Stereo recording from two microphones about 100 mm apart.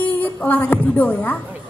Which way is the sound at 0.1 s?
15° left (ahead or behind).